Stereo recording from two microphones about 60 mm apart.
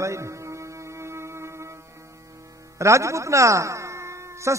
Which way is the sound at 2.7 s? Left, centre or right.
Right.